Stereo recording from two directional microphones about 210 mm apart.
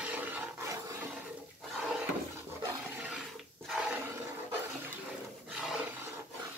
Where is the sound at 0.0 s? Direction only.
5° right (ahead or behind).